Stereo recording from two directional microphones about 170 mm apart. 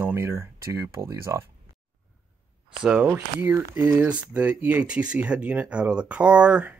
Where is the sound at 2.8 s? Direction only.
10° right (ahead or behind).